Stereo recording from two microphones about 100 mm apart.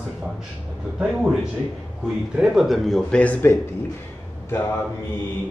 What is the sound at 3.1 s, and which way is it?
Speech, 15° left (ahead or behind).